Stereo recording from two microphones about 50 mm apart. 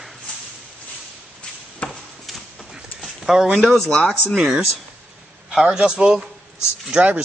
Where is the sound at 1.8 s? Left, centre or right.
Left.